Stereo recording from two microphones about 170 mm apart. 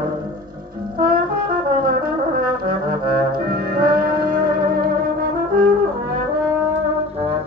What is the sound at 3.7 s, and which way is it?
Music, 60° right (ahead or behind).